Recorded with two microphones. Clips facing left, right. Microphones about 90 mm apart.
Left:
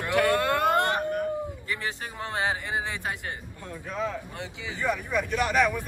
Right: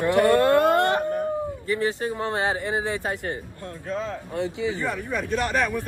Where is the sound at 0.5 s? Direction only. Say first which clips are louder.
Right 5 dB; 20° left (ahead or behind).